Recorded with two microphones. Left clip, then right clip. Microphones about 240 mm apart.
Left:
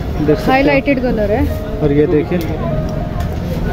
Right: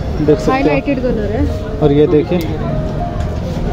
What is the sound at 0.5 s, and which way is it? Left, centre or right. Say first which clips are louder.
Speech: left 2 dB; left.